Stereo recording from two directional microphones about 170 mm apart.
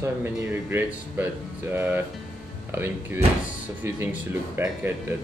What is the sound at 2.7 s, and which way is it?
Speech, 15° right (ahead or behind).